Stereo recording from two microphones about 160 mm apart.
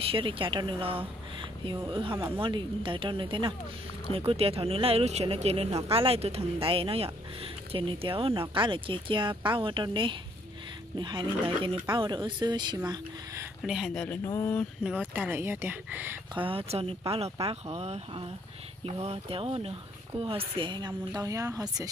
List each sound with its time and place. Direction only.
0.0 s a woman's voice: 35° right (ahead or behind)
13.6 s speech: 5° right (ahead or behind); by 14.7 s 15° left (ahead or behind)
14.8 s speech: 5° right (ahead or behind)
16.3 s a woman's voice: 35° right (ahead or behind)